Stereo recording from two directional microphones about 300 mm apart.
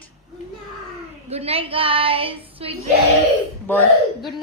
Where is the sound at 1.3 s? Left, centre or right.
Centre.